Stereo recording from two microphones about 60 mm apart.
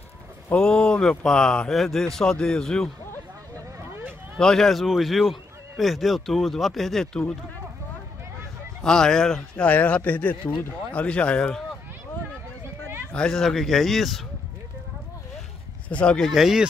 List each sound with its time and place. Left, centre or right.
0.6 s speech: centre
4.4 s speech: centre
8.8 s speech: centre
9.7 s speech: left
13.3 s speech: centre
15.9 s speech: centre
16.2 s speech: centre